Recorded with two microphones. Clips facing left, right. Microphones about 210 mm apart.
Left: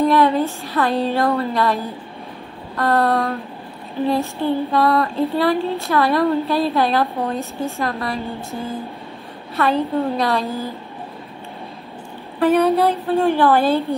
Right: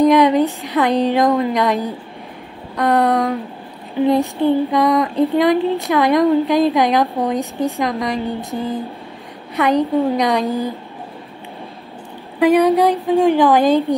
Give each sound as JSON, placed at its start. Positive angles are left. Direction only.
{"t": 0.0, "sound": "speech", "side_deg": -15}
{"t": 4.4, "sound": "speech", "side_deg": -15}
{"t": 12.4, "sound": "speech", "side_deg": -15}